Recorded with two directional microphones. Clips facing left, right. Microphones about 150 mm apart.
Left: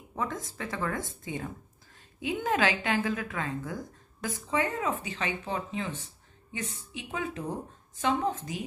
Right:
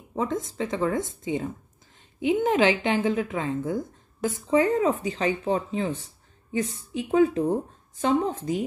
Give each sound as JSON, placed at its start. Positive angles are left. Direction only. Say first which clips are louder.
{"t": 0.1, "sound": "a woman's voice", "louder": "right 7 dB", "side_deg": -20}